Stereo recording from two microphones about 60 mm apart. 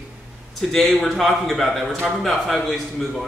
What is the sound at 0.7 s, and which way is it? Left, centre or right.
A man's voice, centre.